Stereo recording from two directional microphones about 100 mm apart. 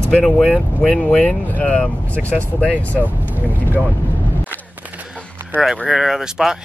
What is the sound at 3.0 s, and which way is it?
Vehicle, 15° right (ahead or behind).